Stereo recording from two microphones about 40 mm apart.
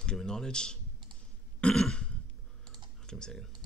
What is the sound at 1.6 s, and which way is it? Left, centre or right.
Cough, left.